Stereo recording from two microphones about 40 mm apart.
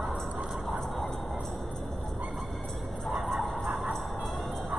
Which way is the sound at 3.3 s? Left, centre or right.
Centre.